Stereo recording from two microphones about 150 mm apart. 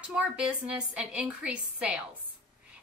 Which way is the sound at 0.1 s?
5° right (ahead or behind).